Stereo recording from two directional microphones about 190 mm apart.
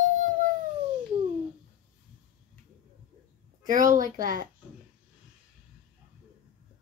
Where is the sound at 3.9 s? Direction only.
45° right (ahead or behind).